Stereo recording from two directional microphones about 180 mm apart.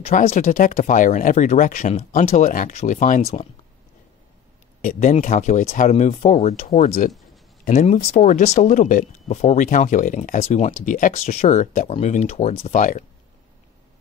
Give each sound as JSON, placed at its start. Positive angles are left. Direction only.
{"t": 0.0, "sound": "speech", "side_deg": 35}
{"t": 4.8, "sound": "speech", "side_deg": 45}